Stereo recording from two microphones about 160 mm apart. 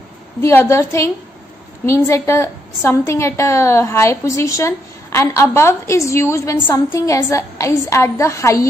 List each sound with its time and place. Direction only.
0.4 s a woman's voice: 15° left (ahead or behind)